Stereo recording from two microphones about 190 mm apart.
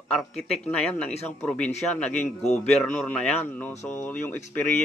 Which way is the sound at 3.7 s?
40° left (ahead or behind).